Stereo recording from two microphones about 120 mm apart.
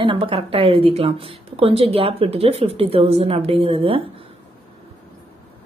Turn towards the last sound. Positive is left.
turn(degrees=-50)  # may be behind; listen again after turning